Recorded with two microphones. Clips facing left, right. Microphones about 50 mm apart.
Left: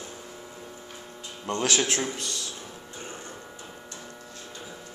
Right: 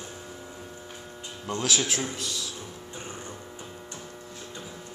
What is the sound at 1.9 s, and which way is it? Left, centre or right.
Speech, centre.